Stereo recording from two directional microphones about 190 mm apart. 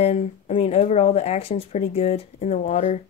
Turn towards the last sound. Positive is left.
turn(degrees=35)  # may be behind; listen again after turning